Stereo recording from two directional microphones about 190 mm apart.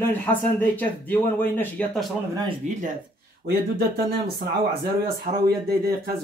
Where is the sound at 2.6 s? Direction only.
40° right (ahead or behind).